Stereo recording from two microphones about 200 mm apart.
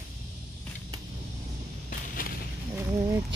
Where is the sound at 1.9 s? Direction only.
45° left (ahead or behind).